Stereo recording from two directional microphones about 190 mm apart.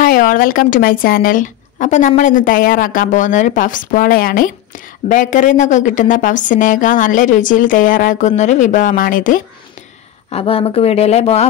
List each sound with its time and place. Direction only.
0.0 s speech: 45° left (ahead or behind)
10.3 s speech: 30° left (ahead or behind)